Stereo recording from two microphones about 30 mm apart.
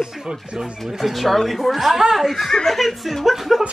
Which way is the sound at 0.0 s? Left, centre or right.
Centre.